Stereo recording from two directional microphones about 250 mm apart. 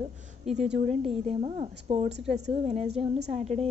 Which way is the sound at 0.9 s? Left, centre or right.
Right.